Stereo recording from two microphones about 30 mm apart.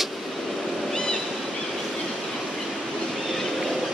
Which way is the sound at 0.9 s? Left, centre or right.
Left.